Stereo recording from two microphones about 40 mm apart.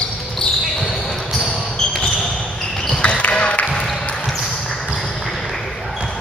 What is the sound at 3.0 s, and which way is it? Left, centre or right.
Basketball bounce, left.